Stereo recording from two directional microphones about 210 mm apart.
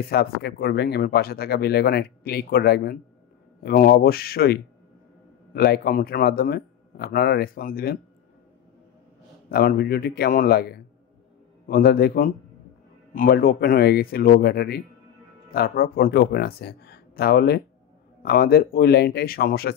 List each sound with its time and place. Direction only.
0.1 s speech: 50° left (ahead or behind)
9.5 s speech: 50° left (ahead or behind)